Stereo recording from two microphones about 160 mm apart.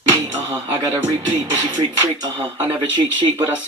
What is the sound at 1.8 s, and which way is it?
Speech, 25° right (ahead or behind).